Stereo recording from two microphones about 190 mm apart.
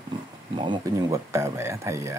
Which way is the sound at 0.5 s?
25° right (ahead or behind).